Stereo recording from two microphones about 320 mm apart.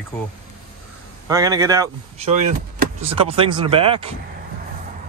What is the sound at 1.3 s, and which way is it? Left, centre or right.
Speech, centre.